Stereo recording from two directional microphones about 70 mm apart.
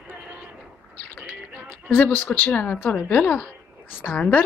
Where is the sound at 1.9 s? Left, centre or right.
Left.